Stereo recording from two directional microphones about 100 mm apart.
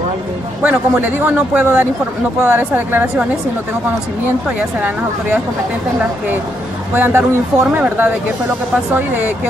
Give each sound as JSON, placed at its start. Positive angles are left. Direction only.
{"t": 0.6, "sound": "a man's voice", "side_deg": -15}
{"t": 4.5, "sound": "a man's voice", "side_deg": -15}
{"t": 7.0, "sound": "speech", "side_deg": -25}